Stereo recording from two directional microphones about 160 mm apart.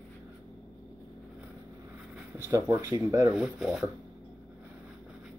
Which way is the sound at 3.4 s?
Centre (ahead or behind).